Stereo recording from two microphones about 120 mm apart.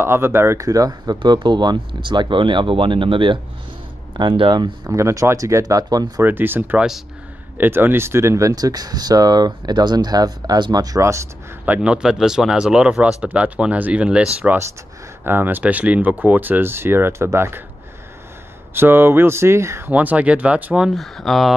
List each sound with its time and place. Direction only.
0.0 s speech: 20° right (ahead or behind); by 4.9 s 40° right (ahead or behind)
4.9 s speech: 25° right (ahead or behind)
6.2 s speech: 15° right (ahead or behind)
11.6 s speech: 10° right (ahead or behind)
18.8 s speech: 20° right (ahead or behind); by 21.5 s centre (ahead or behind)